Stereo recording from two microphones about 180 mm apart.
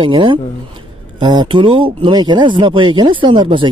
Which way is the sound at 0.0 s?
30° right (ahead or behind).